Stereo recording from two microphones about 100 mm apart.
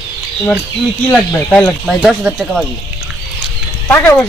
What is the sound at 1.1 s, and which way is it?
Speech, 15° left (ahead or behind).